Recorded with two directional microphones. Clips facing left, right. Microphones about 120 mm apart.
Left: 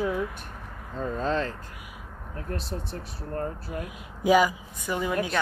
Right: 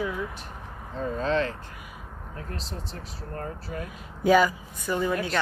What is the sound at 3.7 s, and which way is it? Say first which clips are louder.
A woman's voice: left 1 dB; 10° left (ahead or behind).